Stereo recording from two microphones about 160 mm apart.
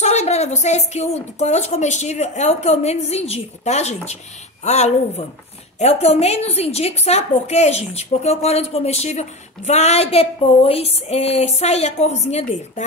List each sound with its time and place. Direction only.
0.0 s a woman's voice: 45° left (ahead or behind)